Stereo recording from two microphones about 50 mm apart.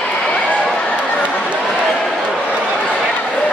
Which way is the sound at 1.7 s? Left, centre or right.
Centre.